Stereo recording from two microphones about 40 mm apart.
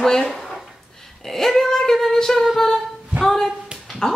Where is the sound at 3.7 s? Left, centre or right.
Right.